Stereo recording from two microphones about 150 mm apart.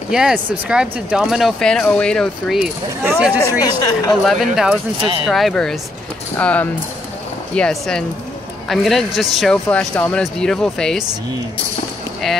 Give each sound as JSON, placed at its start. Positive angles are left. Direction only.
{"t": 0.1, "sound": "speech", "side_deg": -5}
{"t": 3.0, "sound": "speech", "side_deg": -10}
{"t": 3.3, "sound": "speech", "side_deg": 20}
{"t": 4.2, "sound": "speech", "side_deg": 0}